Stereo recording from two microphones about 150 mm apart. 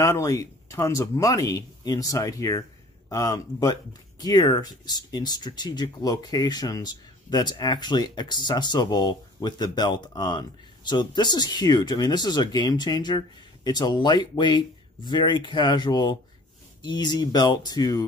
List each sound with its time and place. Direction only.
0.0 s speech: 20° left (ahead or behind)